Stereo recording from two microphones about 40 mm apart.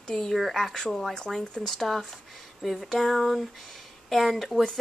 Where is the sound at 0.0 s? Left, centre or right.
Centre.